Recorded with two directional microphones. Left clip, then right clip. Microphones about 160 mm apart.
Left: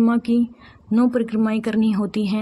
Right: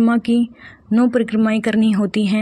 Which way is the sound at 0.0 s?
20° right (ahead or behind).